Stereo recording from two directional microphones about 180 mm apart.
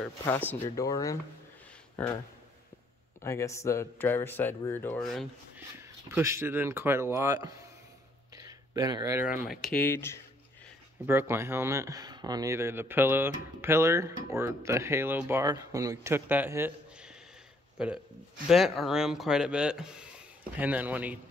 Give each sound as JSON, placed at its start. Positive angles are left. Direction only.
{"t": 0.0, "sound": "speech", "side_deg": 10}
{"t": 0.7, "sound": "speech", "side_deg": 20}
{"t": 3.2, "sound": "speech", "side_deg": 15}
{"t": 5.0, "sound": "speech", "side_deg": 0}
{"t": 6.0, "sound": "speech", "side_deg": -15}
{"t": 8.4, "sound": "a sound", "side_deg": -20}
{"t": 9.8, "sound": "speech", "side_deg": 15}
{"t": 11.1, "sound": "speech", "side_deg": -15}